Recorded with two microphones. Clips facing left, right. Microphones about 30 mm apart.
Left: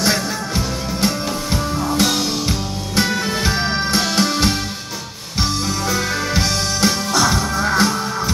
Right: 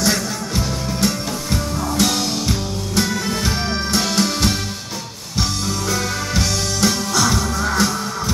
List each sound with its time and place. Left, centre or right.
1.0 s music: centre
3.0 s music: left